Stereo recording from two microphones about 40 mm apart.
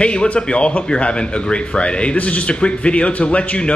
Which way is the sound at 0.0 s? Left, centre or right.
Left.